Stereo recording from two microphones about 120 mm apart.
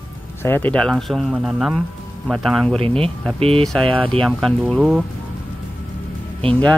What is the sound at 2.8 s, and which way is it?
Speech, 50° right (ahead or behind).